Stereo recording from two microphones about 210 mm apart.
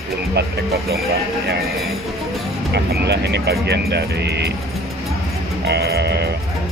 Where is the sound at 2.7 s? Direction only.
55° right (ahead or behind).